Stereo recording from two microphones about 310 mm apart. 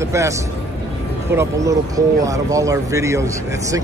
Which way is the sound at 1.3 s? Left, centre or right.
Centre.